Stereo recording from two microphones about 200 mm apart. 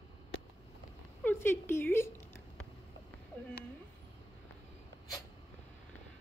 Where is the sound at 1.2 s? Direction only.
10° left (ahead or behind).